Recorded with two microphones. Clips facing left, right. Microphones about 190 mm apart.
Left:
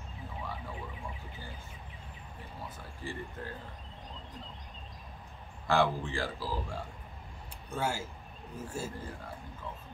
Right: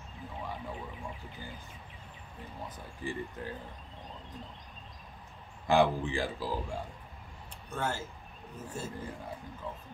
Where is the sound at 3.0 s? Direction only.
15° right (ahead or behind).